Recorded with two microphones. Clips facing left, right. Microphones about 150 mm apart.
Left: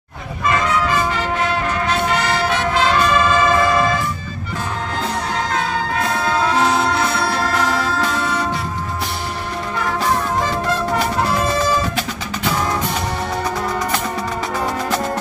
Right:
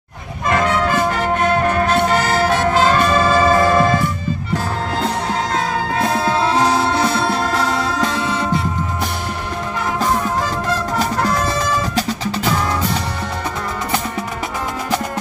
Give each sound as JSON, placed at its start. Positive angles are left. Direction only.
{"t": 0.5, "sound": "music", "side_deg": -55}
{"t": 5.5, "sound": "music", "side_deg": -30}